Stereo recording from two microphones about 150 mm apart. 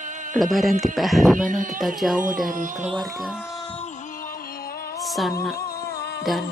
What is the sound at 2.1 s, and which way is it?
Speech, 65° right (ahead or behind).